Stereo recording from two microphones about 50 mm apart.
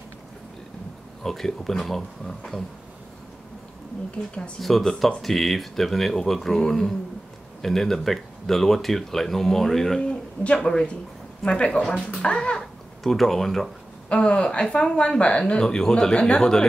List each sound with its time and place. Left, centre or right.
1.2 s speech: centre
4.6 s a child's voice: centre
13.0 s speech: centre
14.0 s speech: left